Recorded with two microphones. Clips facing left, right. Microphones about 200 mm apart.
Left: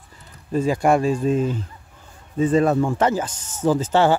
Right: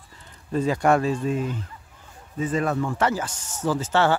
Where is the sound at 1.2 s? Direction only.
30° left (ahead or behind).